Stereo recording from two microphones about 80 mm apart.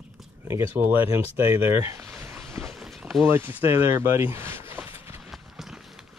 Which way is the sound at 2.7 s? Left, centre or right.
Centre.